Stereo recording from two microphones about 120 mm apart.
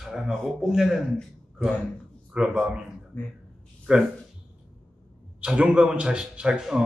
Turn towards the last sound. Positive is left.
turn(degrees=-5)  # may be behind; listen again after turning